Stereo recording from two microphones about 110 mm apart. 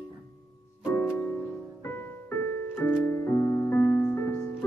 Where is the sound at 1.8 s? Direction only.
25° left (ahead or behind).